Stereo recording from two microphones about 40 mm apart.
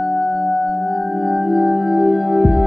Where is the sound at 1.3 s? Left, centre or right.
Centre.